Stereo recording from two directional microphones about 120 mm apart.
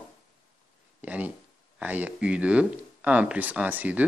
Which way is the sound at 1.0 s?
15° right (ahead or behind).